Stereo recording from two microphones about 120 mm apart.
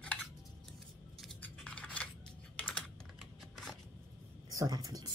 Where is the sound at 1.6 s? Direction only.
10° left (ahead or behind).